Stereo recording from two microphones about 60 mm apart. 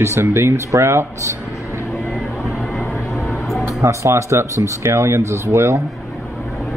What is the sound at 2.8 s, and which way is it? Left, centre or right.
Vehicle, centre.